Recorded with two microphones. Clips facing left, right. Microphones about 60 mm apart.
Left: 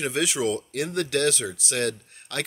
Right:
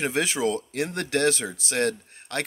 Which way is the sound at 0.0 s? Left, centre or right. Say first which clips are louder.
Right 1 dB; right.